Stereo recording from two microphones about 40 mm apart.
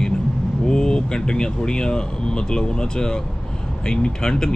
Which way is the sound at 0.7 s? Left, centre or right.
Centre.